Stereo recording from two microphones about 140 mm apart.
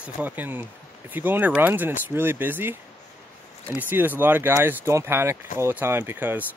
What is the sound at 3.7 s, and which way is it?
Speech, 15° right (ahead or behind).